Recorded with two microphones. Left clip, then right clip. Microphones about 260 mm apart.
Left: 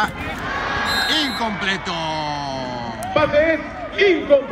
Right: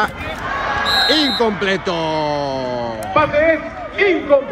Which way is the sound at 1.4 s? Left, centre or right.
Centre.